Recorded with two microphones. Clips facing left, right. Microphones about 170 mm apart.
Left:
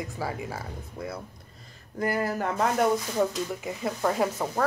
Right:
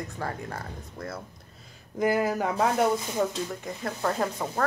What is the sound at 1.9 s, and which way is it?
Speech, 15° right (ahead or behind).